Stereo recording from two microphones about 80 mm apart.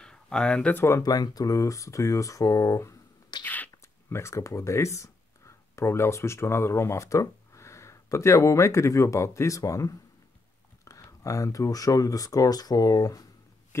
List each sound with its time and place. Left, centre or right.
0.0 s a sound: centre
0.7 s speech: left
1.0 s speech: left
3.4 s whispering: left
4.1 s speech: left
11.0 s speech: left